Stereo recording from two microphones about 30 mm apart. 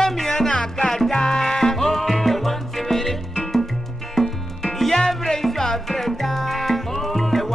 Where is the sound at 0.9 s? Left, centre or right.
Centre.